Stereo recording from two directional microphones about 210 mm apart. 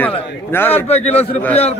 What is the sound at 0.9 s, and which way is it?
Speech, 30° left (ahead or behind).